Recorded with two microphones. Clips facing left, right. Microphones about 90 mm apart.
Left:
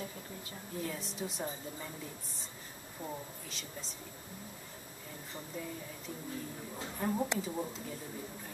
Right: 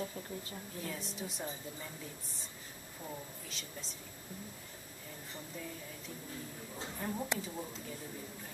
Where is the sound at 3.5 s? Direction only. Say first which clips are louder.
Left 2 dB; centre (ahead or behind).